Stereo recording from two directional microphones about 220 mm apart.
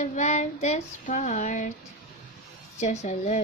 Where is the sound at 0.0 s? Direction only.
35° left (ahead or behind).